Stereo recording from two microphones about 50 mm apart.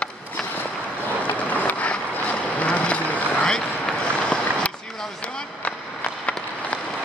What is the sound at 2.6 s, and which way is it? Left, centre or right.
Vehicle, left.